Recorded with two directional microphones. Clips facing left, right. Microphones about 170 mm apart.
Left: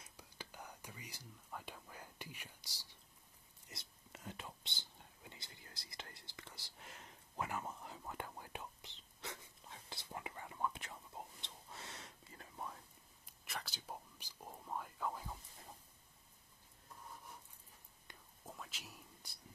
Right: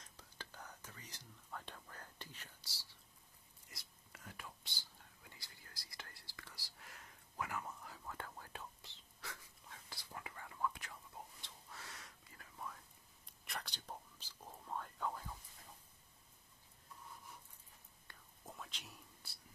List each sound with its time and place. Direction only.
0.0 s whispering: 10° left (ahead or behind); by 12.7 s 30° left (ahead or behind)
13.2 s whispering: centre (ahead or behind)
18.1 s whispering: 15° left (ahead or behind)
18.4 s whispering: centre (ahead or behind)